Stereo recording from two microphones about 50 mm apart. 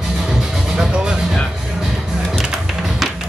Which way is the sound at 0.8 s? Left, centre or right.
Centre.